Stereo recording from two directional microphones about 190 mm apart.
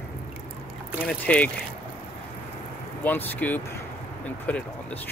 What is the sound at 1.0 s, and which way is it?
Speech, 5° left (ahead or behind).